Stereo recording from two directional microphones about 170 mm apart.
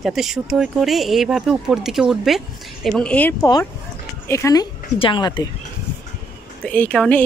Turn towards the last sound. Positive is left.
turn(degrees=5)  # may be behind; listen again after turning